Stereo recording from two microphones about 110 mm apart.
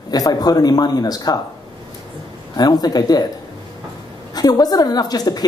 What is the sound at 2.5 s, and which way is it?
Speech, 35° left (ahead or behind).